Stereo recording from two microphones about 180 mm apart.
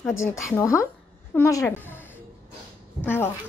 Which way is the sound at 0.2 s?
15° left (ahead or behind).